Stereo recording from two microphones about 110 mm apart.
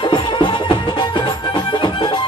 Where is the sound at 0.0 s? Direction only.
45° left (ahead or behind).